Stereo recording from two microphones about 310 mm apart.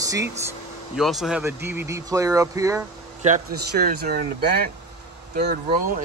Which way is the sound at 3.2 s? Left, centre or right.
Right.